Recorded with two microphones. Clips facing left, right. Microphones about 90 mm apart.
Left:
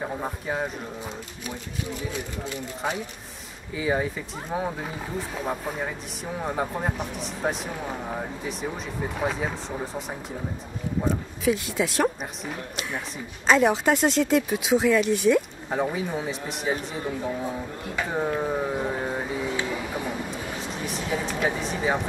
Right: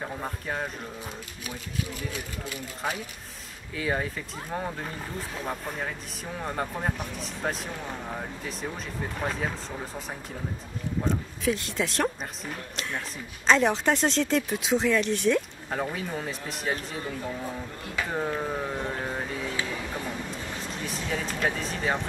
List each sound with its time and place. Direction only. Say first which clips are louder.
0.0 s speech: left 4 dB; 10° left (ahead or behind)
2.1 s speech: left 4 dB; 25° left (ahead or behind)
3.7 s speech: left 4 dB; 5° left (ahead or behind)
18.0 s a sound: left 3 dB; 5° left (ahead or behind)